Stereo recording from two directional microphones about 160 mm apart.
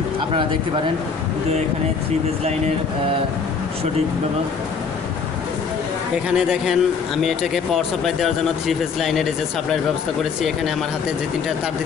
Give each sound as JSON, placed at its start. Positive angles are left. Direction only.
{"t": 6.3, "sound": "speech", "side_deg": -5}